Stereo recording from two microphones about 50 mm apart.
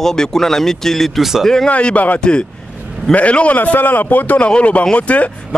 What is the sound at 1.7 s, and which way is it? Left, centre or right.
A man's voice, left.